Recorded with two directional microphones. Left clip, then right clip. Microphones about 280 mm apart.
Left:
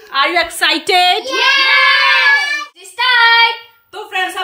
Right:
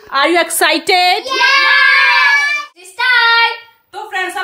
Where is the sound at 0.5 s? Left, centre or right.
Centre.